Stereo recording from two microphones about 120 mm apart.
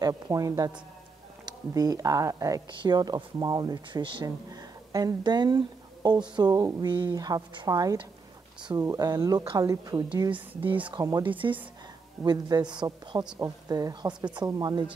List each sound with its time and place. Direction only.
0.0 s speech: 30° right (ahead or behind)
2.7 s speech: 40° right (ahead or behind)
11.2 s a woman's voice: 45° right (ahead or behind)
12.3 s speech: 30° right (ahead or behind)